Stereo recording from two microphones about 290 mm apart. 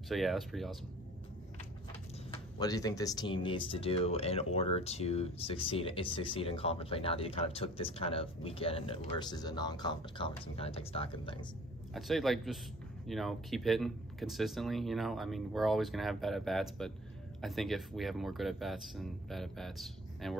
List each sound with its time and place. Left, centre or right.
0.1 s speech: centre
2.3 s speech: centre
11.9 s speech: centre